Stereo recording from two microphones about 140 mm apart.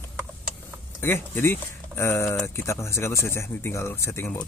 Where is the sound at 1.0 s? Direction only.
15° left (ahead or behind).